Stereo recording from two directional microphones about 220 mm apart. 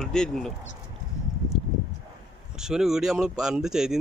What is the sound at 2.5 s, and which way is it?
Speech, centre (ahead or behind).